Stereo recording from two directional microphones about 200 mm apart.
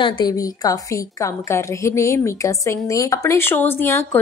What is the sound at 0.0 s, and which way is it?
A woman's voice, 20° left (ahead or behind).